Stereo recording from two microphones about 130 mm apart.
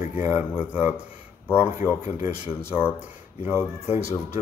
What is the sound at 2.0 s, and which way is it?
Speech, 20° right (ahead or behind).